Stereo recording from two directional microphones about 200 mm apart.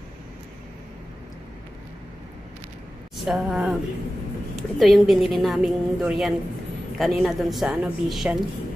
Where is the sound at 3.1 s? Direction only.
Centre (ahead or behind).